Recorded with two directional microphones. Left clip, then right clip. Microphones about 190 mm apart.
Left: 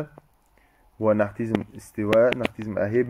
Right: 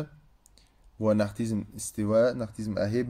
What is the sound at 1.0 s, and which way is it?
Speech, 15° right (ahead or behind).